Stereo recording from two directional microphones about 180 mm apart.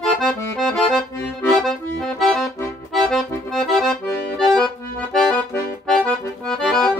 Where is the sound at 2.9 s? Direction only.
Centre (ahead or behind).